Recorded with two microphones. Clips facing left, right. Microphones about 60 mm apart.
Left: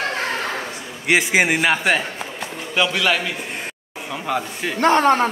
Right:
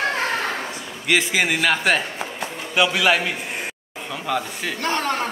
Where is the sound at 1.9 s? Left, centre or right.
Centre.